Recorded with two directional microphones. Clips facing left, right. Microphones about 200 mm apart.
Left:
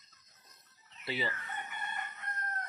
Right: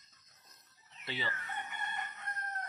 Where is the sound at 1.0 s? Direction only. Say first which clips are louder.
Left 4 dB; 5° left (ahead or behind).